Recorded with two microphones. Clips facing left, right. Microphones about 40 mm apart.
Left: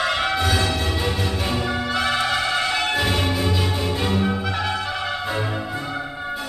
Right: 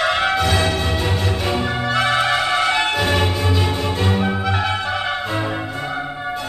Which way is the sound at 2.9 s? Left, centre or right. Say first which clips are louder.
Right 3 dB; centre.